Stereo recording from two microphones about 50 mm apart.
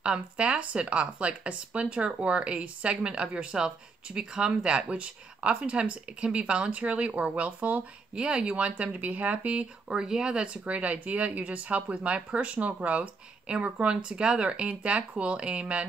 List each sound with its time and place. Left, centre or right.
0.0 s speech: centre
9.8 s speech: centre